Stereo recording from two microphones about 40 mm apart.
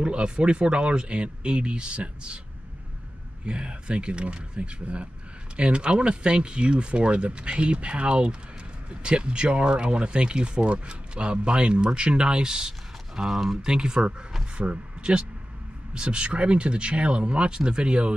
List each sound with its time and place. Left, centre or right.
0.0 s speech: right
3.4 s speech: right; by 13.7 s centre
13.7 s speech: centre